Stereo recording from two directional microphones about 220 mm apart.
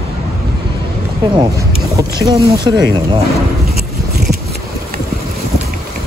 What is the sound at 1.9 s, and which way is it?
Speech, 15° right (ahead or behind).